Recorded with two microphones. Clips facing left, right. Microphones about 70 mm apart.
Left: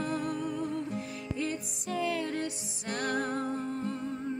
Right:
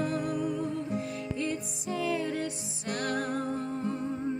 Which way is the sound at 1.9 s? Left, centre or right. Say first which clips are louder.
Right 1 dB; centre.